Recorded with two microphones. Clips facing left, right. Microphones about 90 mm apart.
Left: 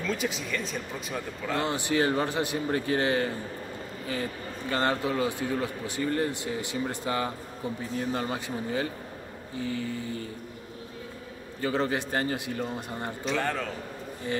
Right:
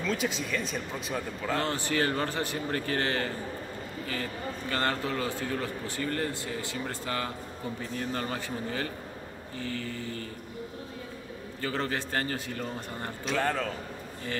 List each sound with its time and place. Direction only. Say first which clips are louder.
0.0 s speech: even; centre (ahead or behind)
1.6 s a man's voice: left 4 dB; 15° left (ahead or behind)
11.6 s a man's voice: left 4 dB; 15° left (ahead or behind)
13.2 s speech: right 1 dB; centre (ahead or behind)